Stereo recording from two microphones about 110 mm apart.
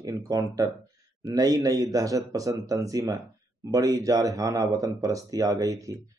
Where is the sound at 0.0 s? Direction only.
35° right (ahead or behind).